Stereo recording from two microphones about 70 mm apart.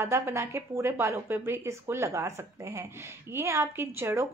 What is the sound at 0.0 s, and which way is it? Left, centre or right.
A woman's voice, right.